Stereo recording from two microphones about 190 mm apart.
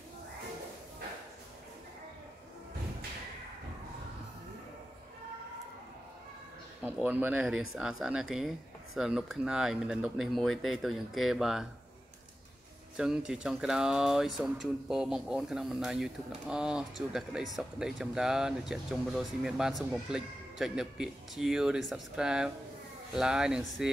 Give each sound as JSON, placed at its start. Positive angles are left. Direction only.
{"t": 6.8, "sound": "speech", "side_deg": -10}
{"t": 12.9, "sound": "speech", "side_deg": -5}